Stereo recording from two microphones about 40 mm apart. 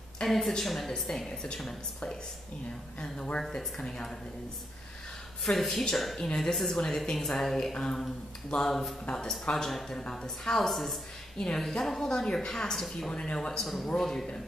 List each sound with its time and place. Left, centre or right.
0.2 s a woman's voice: centre
5.4 s a woman's voice: centre
6.5 s a woman's voice: centre
9.9 s speech: left
10.2 s a woman's voice: centre
10.7 s speech: centre
11.3 s a woman's voice: centre
13.1 s speech: left
13.7 s a woman's voice: centre